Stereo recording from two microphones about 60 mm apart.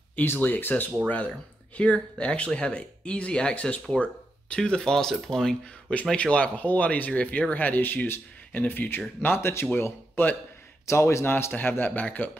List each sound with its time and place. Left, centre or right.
0.1 s speech: left; by 3.8 s centre
3.9 s a sound: left
4.6 s speech: centre
6.1 s a man's voice: left
10.9 s a man's voice: left
11.5 s speech: left